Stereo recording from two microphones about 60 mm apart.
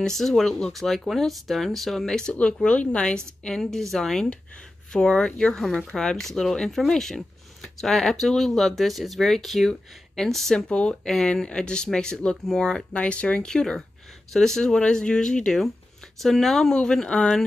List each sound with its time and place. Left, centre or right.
0.0 s speech: centre